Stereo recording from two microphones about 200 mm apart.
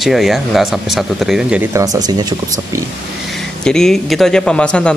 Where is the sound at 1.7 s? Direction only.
20° right (ahead or behind).